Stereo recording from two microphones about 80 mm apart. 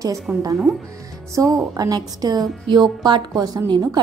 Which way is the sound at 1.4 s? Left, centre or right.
Right.